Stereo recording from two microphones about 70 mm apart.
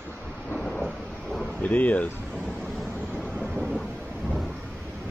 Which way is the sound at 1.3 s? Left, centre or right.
Centre.